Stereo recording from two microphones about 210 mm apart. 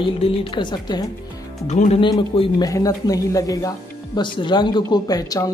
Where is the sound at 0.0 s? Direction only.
25° left (ahead or behind).